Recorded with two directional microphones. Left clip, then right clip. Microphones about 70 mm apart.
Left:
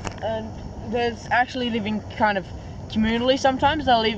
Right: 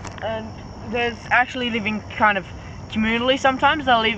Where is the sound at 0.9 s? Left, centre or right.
Centre.